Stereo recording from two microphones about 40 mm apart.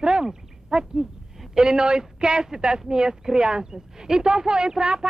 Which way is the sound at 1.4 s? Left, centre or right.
Centre.